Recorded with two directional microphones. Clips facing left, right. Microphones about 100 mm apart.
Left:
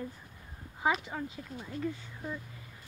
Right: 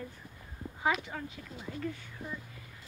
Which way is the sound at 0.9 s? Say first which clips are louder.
Even; 35° left (ahead or behind).